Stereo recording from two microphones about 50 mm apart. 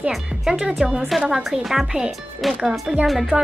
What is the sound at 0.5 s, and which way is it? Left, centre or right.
A woman's voice, centre.